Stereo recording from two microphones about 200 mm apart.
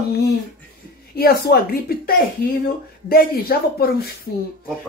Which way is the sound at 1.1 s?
50° left (ahead or behind).